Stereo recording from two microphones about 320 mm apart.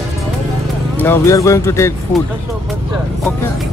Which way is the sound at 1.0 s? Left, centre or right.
Centre.